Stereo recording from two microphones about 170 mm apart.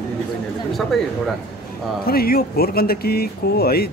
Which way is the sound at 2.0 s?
60° left (ahead or behind).